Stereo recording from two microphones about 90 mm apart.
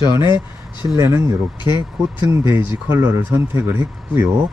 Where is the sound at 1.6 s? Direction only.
55° left (ahead or behind).